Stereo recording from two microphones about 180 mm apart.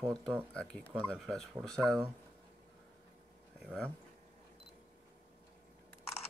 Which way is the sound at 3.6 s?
Centre (ahead or behind).